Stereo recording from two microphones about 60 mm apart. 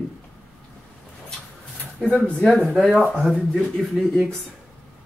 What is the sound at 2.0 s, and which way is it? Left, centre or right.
Speech, centre.